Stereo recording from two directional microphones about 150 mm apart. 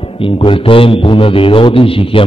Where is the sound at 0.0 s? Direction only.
35° left (ahead or behind).